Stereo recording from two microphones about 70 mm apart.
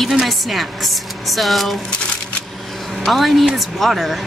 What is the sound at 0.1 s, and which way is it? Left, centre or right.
A woman's voice, centre.